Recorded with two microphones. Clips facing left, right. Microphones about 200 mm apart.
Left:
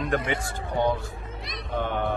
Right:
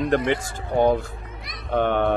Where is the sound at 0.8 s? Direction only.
55° right (ahead or behind).